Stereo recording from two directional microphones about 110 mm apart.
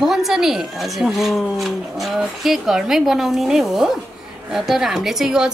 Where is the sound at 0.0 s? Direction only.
Centre (ahead or behind).